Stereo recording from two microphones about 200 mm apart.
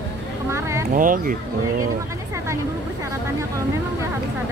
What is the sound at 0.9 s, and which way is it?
Speech, 40° right (ahead or behind).